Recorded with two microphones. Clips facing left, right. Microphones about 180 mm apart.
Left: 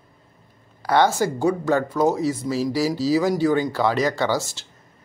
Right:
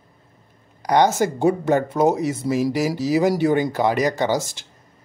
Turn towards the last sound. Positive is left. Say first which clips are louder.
# right 2 dB
turn(degrees=-15)  # may be behind; listen again after turning